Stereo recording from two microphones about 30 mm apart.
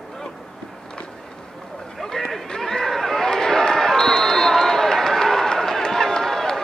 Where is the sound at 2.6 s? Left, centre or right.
Centre.